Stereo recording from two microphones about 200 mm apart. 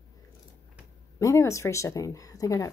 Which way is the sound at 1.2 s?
15° left (ahead or behind).